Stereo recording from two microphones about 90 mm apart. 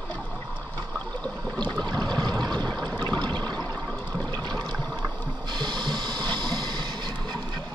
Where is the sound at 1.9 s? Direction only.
50° right (ahead or behind).